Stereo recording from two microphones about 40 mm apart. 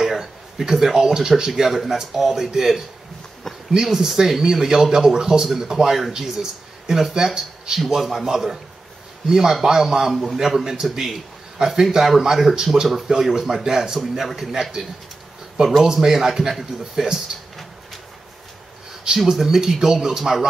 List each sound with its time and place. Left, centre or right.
0.0 s a man's voice: centre
19.2 s a man's voice: centre